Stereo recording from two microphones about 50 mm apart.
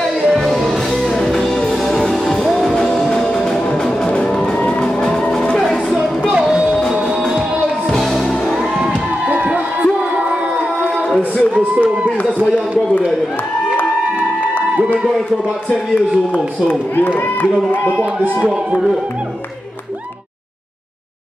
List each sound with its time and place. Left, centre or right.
0.3 s music: centre
4.6 s vehicle: centre
5.6 s a sound: centre
6.9 s music: centre
8.3 s music: centre
8.8 s music: right
11.5 s a sound: right
16.6 s speech: left
18.4 s speech: centre